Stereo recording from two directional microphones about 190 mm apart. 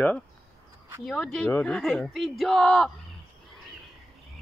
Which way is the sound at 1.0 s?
Centre (ahead or behind).